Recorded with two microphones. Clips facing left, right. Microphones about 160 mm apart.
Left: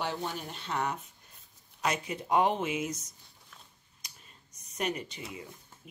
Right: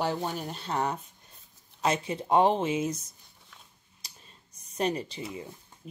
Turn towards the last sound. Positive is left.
turn(degrees=-30)  # may be behind; listen again after turning